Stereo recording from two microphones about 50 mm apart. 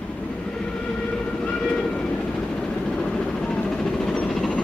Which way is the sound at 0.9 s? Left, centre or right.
Centre.